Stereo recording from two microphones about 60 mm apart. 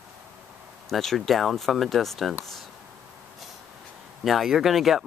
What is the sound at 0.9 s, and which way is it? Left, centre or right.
Speech, centre.